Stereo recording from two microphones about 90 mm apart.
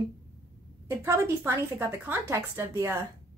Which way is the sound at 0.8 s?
25° right (ahead or behind).